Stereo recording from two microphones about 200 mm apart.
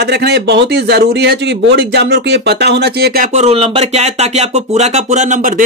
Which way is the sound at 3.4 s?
30° right (ahead or behind).